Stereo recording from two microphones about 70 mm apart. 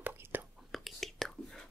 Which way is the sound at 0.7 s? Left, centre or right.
Centre.